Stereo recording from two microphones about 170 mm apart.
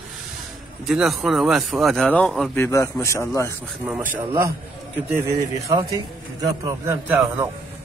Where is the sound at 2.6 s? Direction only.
15° left (ahead or behind).